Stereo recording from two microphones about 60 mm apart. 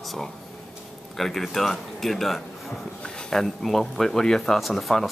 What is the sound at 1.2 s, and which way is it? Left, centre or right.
A man's voice, centre.